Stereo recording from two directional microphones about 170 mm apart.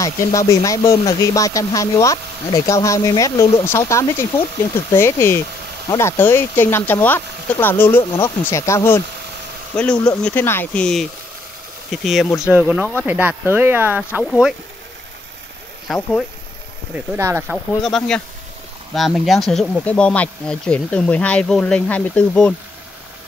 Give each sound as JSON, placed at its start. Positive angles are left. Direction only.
{"t": 0.0, "sound": "speech", "side_deg": 20}
{"t": 15.9, "sound": "speech", "side_deg": 0}
{"t": 16.9, "sound": "speech", "side_deg": -15}
{"t": 17.8, "sound": "speech", "side_deg": 5}